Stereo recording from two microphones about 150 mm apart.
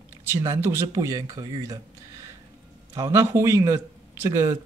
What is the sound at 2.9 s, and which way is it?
Speech, 20° right (ahead or behind).